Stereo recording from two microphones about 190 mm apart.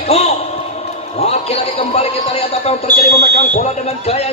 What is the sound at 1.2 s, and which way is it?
Speech, 30° left (ahead or behind).